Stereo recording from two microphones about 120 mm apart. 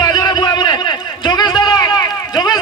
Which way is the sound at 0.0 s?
35° left (ahead or behind).